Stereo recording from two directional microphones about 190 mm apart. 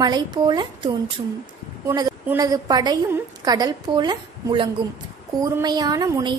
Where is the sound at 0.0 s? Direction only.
20° right (ahead or behind).